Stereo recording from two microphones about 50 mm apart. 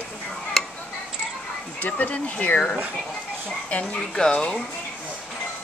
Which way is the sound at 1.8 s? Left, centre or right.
Left.